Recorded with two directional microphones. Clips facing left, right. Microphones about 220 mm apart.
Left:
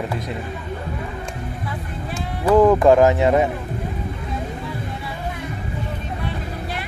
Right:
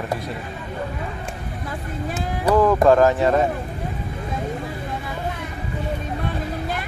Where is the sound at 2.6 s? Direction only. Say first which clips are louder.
Left 2 dB; 15° left (ahead or behind).